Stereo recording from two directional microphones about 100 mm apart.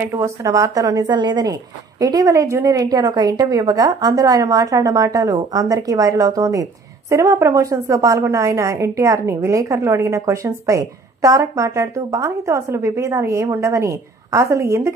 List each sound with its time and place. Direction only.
0.1 s a woman's voice: 30° right (ahead or behind)